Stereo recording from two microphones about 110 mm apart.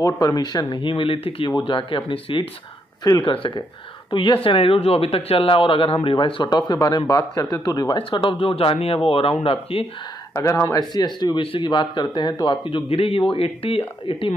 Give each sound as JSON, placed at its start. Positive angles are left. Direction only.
{"t": 0.0, "sound": "speech", "side_deg": 30}
{"t": 3.0, "sound": "speech", "side_deg": 40}
{"t": 6.7, "sound": "speech", "side_deg": 40}
{"t": 10.3, "sound": "speech", "side_deg": 25}
{"t": 12.6, "sound": "speech", "side_deg": 55}